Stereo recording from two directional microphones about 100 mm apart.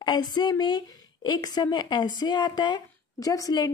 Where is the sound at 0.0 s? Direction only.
45° left (ahead or behind).